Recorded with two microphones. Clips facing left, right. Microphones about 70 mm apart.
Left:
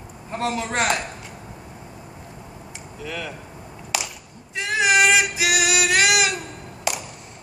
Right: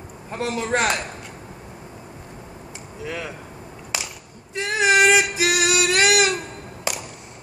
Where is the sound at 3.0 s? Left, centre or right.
Right.